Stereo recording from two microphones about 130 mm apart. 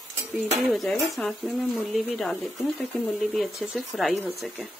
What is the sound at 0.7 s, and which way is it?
Speech, centre (ahead or behind).